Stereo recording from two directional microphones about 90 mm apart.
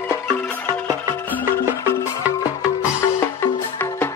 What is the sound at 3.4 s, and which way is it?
Music, 25° left (ahead or behind).